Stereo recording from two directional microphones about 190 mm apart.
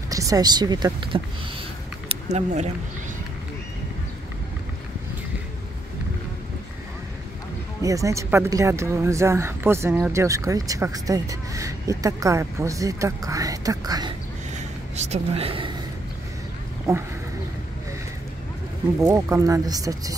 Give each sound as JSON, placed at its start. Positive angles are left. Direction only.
{"t": 0.1, "sound": "speech", "side_deg": -20}
{"t": 2.0, "sound": "a sound", "side_deg": -35}
{"t": 7.8, "sound": "speech", "side_deg": -15}
{"t": 15.0, "sound": "speech", "side_deg": -35}
{"t": 16.9, "sound": "speech", "side_deg": -15}
{"t": 18.9, "sound": "speech", "side_deg": -15}